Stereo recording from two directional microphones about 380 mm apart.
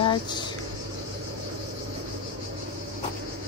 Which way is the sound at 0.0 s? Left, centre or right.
Centre.